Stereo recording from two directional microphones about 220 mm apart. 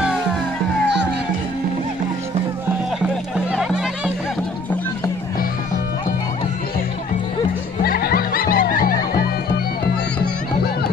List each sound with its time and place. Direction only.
3.5 s music: 5° right (ahead or behind)
7.8 s music: 45° left (ahead or behind)